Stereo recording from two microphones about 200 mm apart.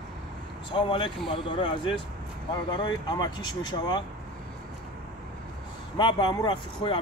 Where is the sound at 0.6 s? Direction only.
25° left (ahead or behind).